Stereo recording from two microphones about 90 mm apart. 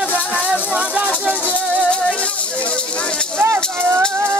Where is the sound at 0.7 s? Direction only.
10° right (ahead or behind).